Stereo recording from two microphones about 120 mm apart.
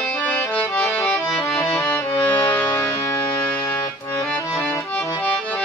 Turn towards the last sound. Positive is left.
turn(degrees=10)  # may be behind; listen again after turning